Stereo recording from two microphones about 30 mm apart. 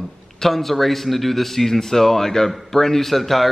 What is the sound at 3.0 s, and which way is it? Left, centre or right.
Speech, centre.